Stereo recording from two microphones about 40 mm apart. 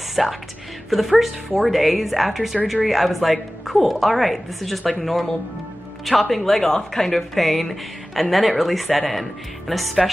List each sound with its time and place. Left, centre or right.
0.1 s a woman's voice: centre